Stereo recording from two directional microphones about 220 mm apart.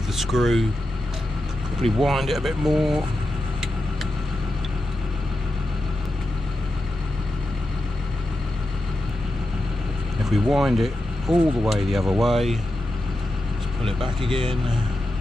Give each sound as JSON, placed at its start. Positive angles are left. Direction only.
{"t": 0.2, "sound": "speech", "side_deg": 0}
{"t": 2.0, "sound": "speech", "side_deg": 0}
{"t": 10.3, "sound": "speech", "side_deg": 0}
{"t": 14.2, "sound": "speech", "side_deg": -25}